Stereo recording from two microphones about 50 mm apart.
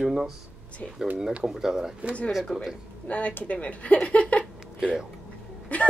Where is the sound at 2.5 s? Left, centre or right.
Centre.